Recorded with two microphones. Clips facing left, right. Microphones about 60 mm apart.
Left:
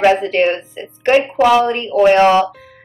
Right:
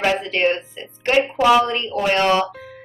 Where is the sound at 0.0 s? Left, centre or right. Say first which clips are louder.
Left 6 dB; left.